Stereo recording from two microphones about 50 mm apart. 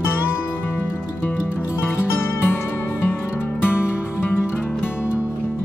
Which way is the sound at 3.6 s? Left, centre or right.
Left.